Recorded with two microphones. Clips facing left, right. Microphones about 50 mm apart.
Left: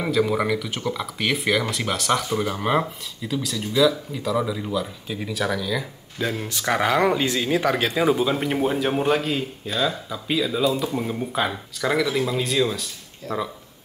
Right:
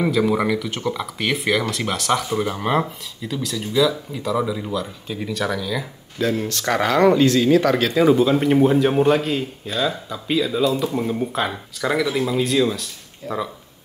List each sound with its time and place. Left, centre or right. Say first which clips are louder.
0.0 s speech: right 3 dB; centre
13.2 s speech: right 1 dB; centre